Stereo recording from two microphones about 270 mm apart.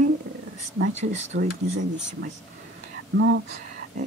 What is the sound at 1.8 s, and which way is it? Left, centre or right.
Speech, right.